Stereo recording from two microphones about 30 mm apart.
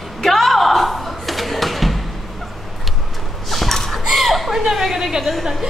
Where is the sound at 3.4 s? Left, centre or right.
Centre.